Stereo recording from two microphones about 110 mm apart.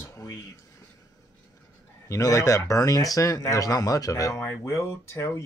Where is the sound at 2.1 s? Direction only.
30° left (ahead or behind).